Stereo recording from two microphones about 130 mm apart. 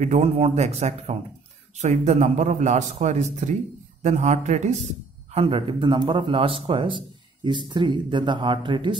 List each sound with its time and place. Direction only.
0.0 s a man's voice: 60° right (ahead or behind)
5.3 s a man's voice: 45° right (ahead or behind)